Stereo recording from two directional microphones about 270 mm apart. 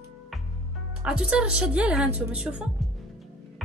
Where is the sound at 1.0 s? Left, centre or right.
Centre.